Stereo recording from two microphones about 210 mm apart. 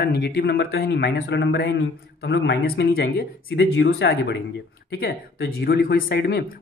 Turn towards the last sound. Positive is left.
turn(degrees=50)  # may be behind; listen again after turning